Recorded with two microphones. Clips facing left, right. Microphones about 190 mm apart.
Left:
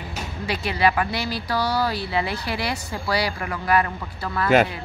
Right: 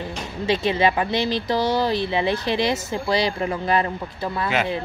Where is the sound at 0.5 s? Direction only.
20° right (ahead or behind).